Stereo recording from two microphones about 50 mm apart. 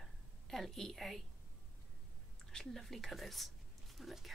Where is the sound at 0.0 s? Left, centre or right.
Centre.